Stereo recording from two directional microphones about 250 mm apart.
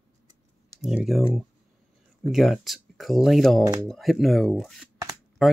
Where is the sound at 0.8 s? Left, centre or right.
Centre.